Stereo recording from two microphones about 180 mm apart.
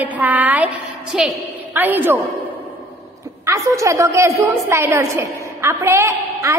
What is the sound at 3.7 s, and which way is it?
A woman's voice, 15° right (ahead or behind).